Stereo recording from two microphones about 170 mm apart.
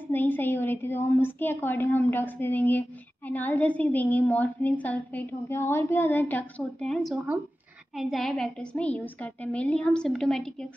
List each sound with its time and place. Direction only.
0.1 s a woman's voice: 10° left (ahead or behind)